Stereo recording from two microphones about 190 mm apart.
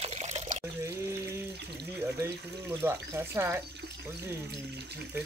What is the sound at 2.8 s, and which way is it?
Speech, 15° right (ahead or behind).